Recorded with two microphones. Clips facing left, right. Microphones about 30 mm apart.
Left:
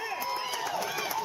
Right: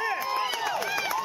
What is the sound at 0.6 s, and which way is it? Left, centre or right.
Run, right.